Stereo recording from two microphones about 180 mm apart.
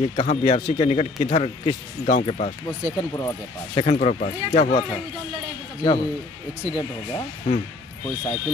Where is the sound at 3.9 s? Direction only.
40° left (ahead or behind).